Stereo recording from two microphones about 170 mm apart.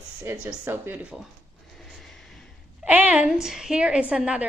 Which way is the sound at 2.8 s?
10° right (ahead or behind).